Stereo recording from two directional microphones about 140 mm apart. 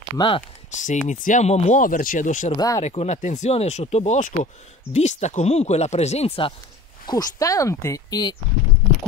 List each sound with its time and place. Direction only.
0.7 s speech: 60° left (ahead or behind)
2.5 s speech: 25° left (ahead or behind)
2.8 s speech: 50° left (ahead or behind)
7.1 s speech: 25° left (ahead or behind)